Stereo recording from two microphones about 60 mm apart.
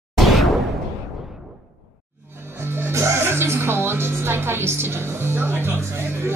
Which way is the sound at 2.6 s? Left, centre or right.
Right.